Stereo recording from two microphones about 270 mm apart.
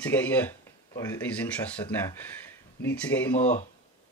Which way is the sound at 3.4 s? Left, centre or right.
Left.